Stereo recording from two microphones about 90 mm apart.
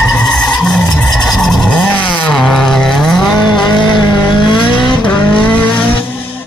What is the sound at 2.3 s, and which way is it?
Vehicle, 5° left (ahead or behind).